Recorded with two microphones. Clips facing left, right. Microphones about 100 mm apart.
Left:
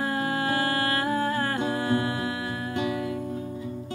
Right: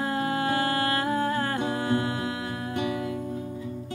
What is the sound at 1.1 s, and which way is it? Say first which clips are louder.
Music: even; 20° right (ahead or behind).